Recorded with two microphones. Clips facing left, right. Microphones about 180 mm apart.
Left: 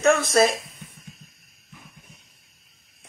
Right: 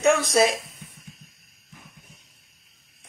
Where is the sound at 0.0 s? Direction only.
15° right (ahead or behind).